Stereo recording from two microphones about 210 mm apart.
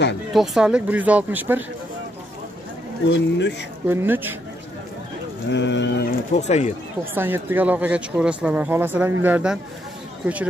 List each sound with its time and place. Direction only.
0.3 s speech: centre (ahead or behind)
3.1 s speech: 55° left (ahead or behind)
3.8 s speech: 10° right (ahead or behind)
5.5 s speech: 55° left (ahead or behind)
6.3 s speech: 35° left (ahead or behind)
7.2 s speech: 10° right (ahead or behind)